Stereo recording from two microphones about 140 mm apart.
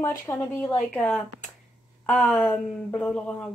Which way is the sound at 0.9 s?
5° left (ahead or behind).